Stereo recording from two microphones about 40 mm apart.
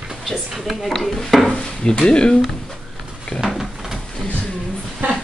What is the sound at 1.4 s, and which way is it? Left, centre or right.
Dishes, left.